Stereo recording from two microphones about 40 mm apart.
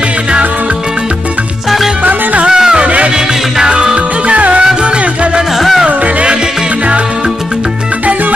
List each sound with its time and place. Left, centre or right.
2.4 s music: centre
2.8 s music: right
3.5 s music: centre
4.3 s music: right